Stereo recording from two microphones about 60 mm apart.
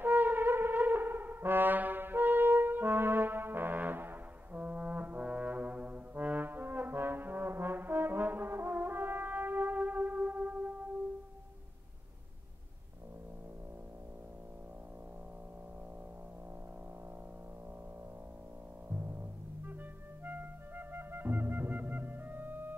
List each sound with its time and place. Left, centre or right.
0.0 s brass instrument: right
4.6 s brass instrument: right
18.9 s music: right
20.2 s music: right